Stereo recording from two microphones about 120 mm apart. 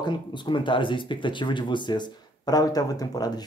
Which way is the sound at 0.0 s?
40° left (ahead or behind).